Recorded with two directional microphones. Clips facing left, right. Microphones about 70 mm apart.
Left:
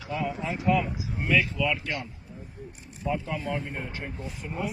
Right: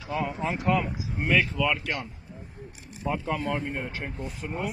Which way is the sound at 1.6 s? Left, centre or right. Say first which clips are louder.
Right 1 dB; right.